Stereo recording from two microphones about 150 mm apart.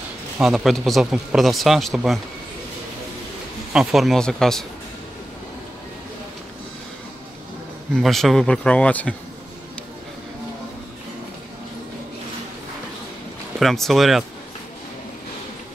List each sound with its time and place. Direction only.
0.4 s speech: centre (ahead or behind)
3.7 s speech: 5° right (ahead or behind)
7.9 s speech: centre (ahead or behind)
13.6 s speech: centre (ahead or behind)